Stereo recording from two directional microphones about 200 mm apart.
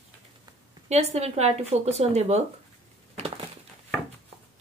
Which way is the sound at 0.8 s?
35° right (ahead or behind).